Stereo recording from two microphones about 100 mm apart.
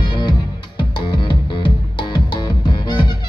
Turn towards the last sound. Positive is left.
turn(degrees=45)  # may be behind; listen again after turning